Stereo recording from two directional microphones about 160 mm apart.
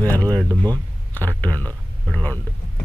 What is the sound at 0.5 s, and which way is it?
Speech, 25° right (ahead or behind).